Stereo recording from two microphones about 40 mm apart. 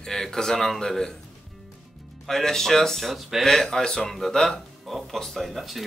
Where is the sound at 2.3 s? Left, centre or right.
Centre.